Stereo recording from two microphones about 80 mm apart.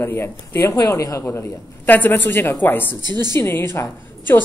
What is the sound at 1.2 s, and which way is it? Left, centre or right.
A woman's voice, left.